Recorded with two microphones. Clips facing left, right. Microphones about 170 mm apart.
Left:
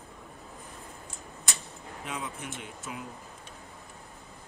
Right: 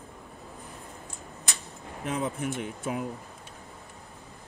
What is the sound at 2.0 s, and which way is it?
Speech, 45° right (ahead or behind).